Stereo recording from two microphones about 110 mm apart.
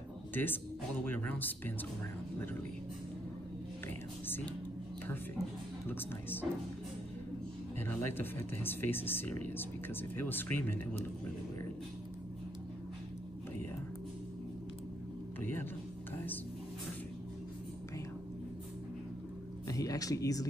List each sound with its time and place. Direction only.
0.3 s speech: 20° left (ahead or behind)
5.9 s speech: 20° left (ahead or behind)
7.8 s speech: 20° left (ahead or behind)
19.7 s music: 35° left (ahead or behind)